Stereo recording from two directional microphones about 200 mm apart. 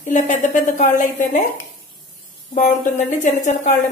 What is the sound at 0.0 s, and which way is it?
A woman's voice, 35° left (ahead or behind).